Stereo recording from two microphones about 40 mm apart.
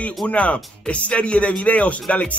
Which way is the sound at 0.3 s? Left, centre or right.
Left.